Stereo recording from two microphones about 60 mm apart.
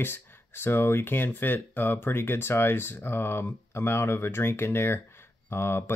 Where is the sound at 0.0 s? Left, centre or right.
Left.